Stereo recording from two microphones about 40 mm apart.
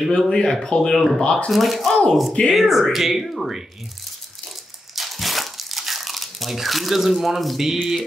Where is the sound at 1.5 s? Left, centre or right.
Centre.